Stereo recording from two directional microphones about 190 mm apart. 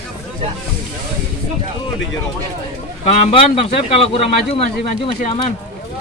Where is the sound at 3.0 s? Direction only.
35° left (ahead or behind).